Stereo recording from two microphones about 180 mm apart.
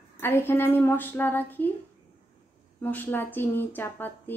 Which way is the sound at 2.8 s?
10° left (ahead or behind).